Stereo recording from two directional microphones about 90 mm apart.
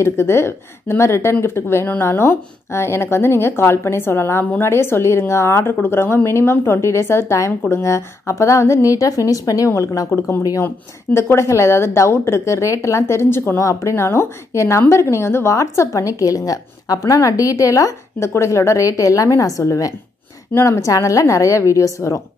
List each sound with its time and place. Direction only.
0.0 s a woman's voice: 30° left (ahead or behind)